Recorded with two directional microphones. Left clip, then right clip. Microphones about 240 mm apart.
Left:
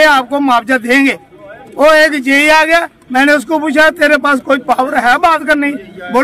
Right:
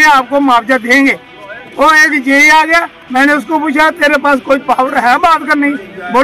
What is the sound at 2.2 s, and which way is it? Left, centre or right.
A man's voice, centre.